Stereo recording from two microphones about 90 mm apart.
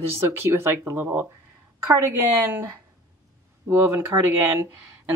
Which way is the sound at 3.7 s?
25° right (ahead or behind).